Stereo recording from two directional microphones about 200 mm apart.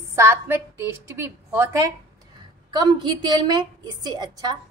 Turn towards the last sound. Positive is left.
turn(degrees=-20)  # may be behind; listen again after turning